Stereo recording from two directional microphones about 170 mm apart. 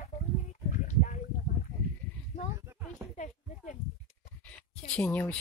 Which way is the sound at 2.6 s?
15° right (ahead or behind).